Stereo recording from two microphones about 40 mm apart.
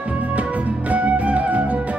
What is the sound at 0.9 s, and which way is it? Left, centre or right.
Music, right.